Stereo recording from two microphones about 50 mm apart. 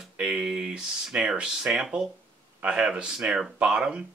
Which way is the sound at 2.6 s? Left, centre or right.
Centre.